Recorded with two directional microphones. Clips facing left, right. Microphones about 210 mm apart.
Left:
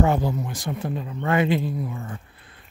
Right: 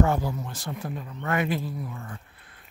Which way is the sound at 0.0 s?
20° left (ahead or behind).